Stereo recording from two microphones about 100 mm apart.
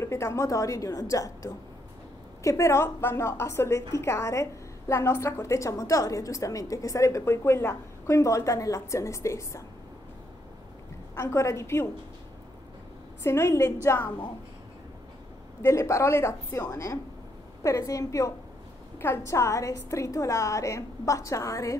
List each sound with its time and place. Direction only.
0.0 s a woman's voice: 30° left (ahead or behind)
11.1 s a woman's voice: 30° left (ahead or behind)
13.2 s a woman's voice: 30° left (ahead or behind)
15.6 s a woman's voice: 30° left (ahead or behind)